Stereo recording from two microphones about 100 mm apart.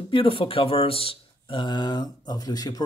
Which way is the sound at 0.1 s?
60° left (ahead or behind).